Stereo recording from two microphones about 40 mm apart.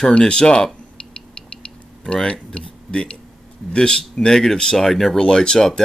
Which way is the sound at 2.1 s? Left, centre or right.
Left.